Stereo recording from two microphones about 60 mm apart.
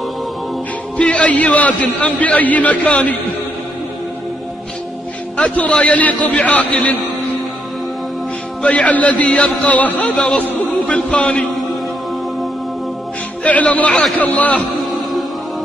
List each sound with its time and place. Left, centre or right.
0.9 s a man's voice: centre
5.4 s a man's voice: left
8.6 s a man's voice: left
13.4 s a man's voice: left